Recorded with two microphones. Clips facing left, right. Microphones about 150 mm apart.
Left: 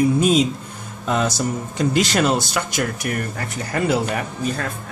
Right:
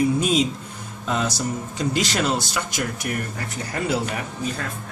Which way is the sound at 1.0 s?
55° left (ahead or behind).